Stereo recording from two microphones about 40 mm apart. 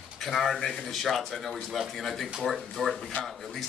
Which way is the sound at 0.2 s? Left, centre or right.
Centre.